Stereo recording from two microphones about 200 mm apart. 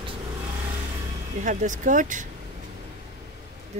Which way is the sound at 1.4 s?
40° right (ahead or behind).